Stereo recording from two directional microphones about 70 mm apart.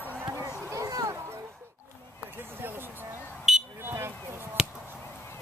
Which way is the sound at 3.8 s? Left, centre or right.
Right.